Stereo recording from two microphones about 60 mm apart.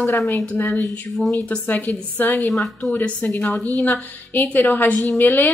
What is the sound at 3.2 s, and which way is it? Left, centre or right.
A woman's voice, left.